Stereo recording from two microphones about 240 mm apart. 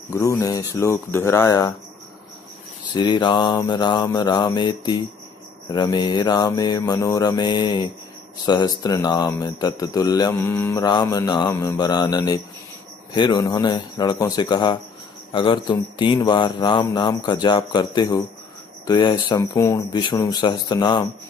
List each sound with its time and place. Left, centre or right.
0.1 s speech: centre
2.9 s speech: centre